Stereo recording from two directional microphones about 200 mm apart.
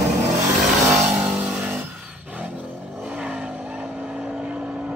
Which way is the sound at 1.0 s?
5° right (ahead or behind).